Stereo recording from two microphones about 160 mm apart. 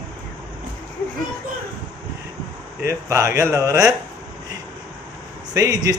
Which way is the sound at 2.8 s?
20° right (ahead or behind).